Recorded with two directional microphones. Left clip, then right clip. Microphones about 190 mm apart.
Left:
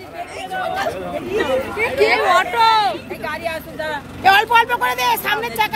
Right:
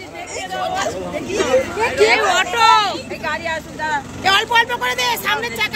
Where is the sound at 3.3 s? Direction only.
55° left (ahead or behind).